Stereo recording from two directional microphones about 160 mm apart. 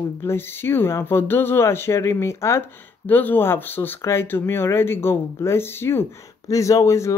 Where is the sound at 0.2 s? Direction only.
15° left (ahead or behind).